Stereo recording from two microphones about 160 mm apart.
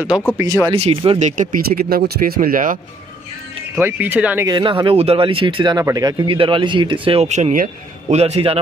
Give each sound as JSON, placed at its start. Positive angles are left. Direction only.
{"t": 0.4, "sound": "speech", "side_deg": -20}
{"t": 0.7, "sound": "speech", "side_deg": -35}
{"t": 1.2, "sound": "speech", "side_deg": -55}
{"t": 3.7, "sound": "speech", "side_deg": -15}
{"t": 4.5, "sound": "speech", "side_deg": -25}
{"t": 8.2, "sound": "speech", "side_deg": -40}